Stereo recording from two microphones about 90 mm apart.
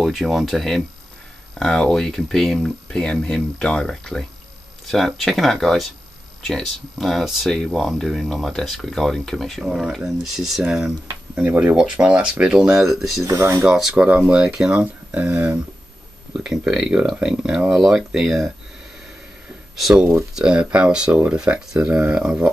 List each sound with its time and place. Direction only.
0.0 s speech: centre (ahead or behind)
9.7 s speech: 10° right (ahead or behind)
9.9 s speech: centre (ahead or behind); by 11.7 s 20° right (ahead or behind)
11.7 s speech: 10° right (ahead or behind)
13.2 s speech: 35° right (ahead or behind)
13.6 s speech: 5° right (ahead or behind)
16.3 s speech: 5° right (ahead or behind)
19.7 s speech: centre (ahead or behind)